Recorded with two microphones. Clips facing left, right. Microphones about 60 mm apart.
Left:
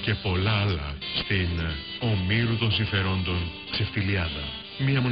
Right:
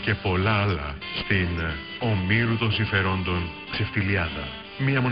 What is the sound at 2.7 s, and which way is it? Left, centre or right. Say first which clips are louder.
Speech: right 3 dB; right.